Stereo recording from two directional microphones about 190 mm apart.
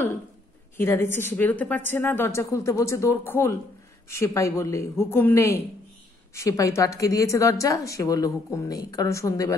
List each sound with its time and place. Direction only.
0.7 s a woman's voice: 10° left (ahead or behind)